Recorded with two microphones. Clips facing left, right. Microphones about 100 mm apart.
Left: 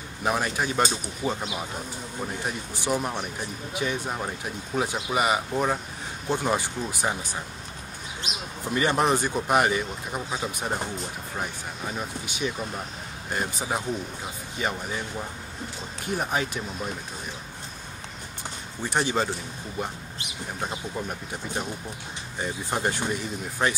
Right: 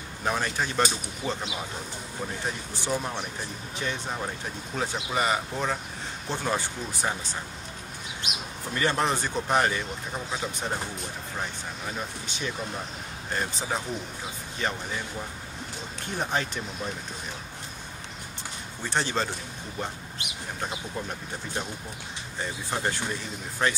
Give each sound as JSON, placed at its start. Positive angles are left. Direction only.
{"t": 0.2, "sound": "speech", "side_deg": 10}
{"t": 1.2, "sound": "speech", "side_deg": 35}
{"t": 2.7, "sound": "speech", "side_deg": 15}
{"t": 8.7, "sound": "speech", "side_deg": 15}
{"t": 12.3, "sound": "speech", "side_deg": 15}
{"t": 16.2, "sound": "speech", "side_deg": 10}
{"t": 18.9, "sound": "speech", "side_deg": 10}
{"t": 20.6, "sound": "speech", "side_deg": 10}